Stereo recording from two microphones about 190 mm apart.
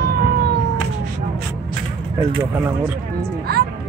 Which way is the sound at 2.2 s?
15° right (ahead or behind).